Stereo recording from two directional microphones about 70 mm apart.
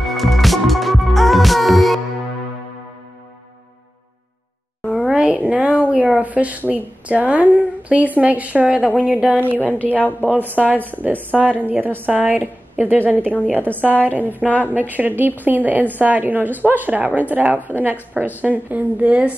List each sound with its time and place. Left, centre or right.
0.0 s music: centre
5.0 s a sound: centre
5.9 s a woman's voice: right
9.6 s a woman's voice: left
10.4 s a woman's voice: right
10.7 s a woman's voice: left
11.0 s a woman's voice: right
14.4 s a woman's voice: left
14.7 s a woman's voice: right